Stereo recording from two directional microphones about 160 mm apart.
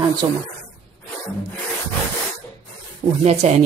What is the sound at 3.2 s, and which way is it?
Speech, 40° right (ahead or behind).